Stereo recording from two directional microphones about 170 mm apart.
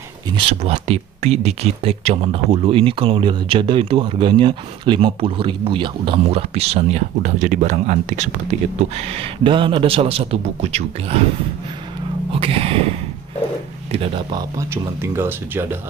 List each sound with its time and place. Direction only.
0.3 s speech: 30° right (ahead or behind)
12.3 s a sound: 35° right (ahead or behind)
13.9 s speech: 30° right (ahead or behind)
14.6 s speech: 15° right (ahead or behind)